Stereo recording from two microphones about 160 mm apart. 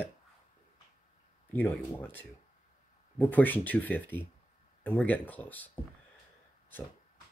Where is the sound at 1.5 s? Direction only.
10° left (ahead or behind).